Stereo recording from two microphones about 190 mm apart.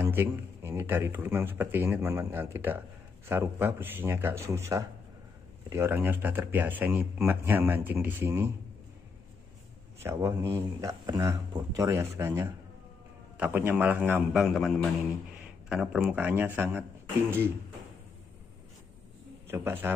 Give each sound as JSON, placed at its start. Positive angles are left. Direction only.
{"t": 0.0, "sound": "speech", "side_deg": -15}
{"t": 9.9, "sound": "a man's voice", "side_deg": -15}
{"t": 19.5, "sound": "speech", "side_deg": -10}